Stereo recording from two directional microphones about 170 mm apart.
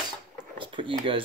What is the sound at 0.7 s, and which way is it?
Speech, 30° right (ahead or behind).